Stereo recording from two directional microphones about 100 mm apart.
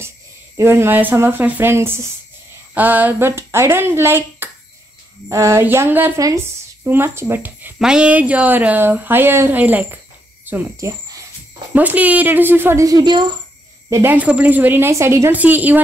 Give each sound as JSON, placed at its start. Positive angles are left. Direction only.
{"t": 0.6, "sound": "speech", "side_deg": -25}
{"t": 6.1, "sound": "speech", "side_deg": -30}
{"t": 7.8, "sound": "speech", "side_deg": -10}
{"t": 10.8, "sound": "cricket", "side_deg": -35}
{"t": 11.7, "sound": "speech", "side_deg": -15}
{"t": 12.8, "sound": "speech", "side_deg": -45}
{"t": 13.8, "sound": "speech", "side_deg": -30}
{"t": 14.1, "sound": "speech", "side_deg": -15}